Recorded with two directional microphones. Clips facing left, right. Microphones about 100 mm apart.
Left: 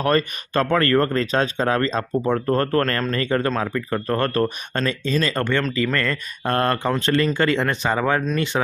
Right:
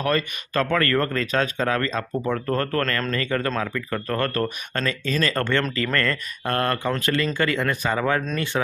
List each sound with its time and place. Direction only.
0.0 s speech: 30° left (ahead or behind); by 6.1 s 15° left (ahead or behind)
6.4 s speech: 30° left (ahead or behind)